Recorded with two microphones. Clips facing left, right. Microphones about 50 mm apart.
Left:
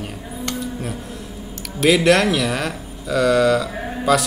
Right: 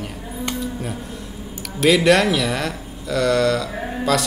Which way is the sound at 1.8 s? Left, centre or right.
Centre.